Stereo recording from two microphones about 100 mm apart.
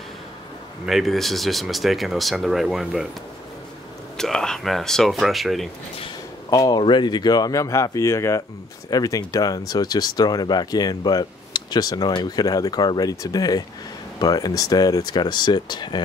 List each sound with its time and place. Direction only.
0.8 s speech: centre (ahead or behind)
4.2 s speech: 5° left (ahead or behind)
6.5 s speech: 40° left (ahead or behind)
6.8 s speech: 50° left (ahead or behind)